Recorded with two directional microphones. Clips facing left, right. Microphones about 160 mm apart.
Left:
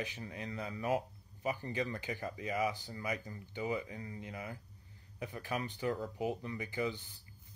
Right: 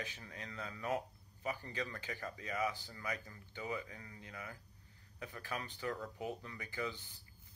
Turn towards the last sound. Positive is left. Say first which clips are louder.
# left 6 dB
turn(degrees=15)  # may be behind; listen again after turning